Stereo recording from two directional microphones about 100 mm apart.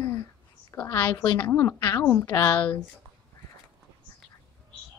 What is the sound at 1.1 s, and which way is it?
A woman's voice, 35° left (ahead or behind).